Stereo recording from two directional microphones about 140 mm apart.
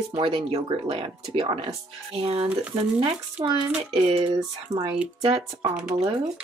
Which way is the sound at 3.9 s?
45° right (ahead or behind).